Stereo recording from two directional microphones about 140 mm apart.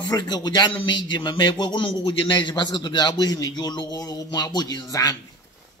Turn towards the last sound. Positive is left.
turn(degrees=25)  # may be behind; listen again after turning